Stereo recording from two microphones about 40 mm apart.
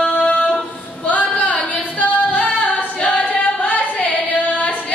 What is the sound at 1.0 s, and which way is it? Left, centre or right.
Singing, left.